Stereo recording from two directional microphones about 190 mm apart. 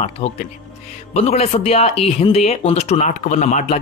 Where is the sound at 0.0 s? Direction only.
35° left (ahead or behind).